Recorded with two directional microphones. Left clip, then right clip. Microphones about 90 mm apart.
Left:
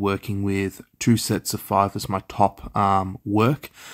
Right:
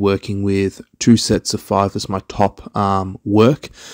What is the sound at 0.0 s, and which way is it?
Speech, 40° right (ahead or behind).